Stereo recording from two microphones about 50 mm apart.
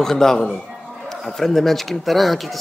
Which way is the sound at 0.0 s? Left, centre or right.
Centre.